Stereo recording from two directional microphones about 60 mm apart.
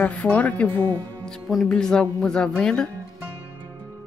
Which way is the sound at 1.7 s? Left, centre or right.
Centre.